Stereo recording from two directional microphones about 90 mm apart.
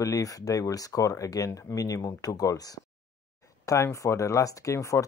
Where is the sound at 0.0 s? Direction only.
40° left (ahead or behind).